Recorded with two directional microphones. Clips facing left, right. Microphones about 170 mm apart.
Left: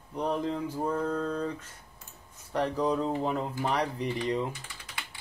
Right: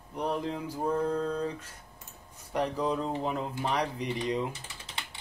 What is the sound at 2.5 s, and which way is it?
Speech, 10° right (ahead or behind).